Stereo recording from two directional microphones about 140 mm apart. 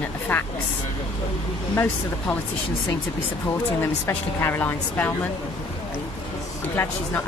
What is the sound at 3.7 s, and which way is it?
Speech, 15° left (ahead or behind).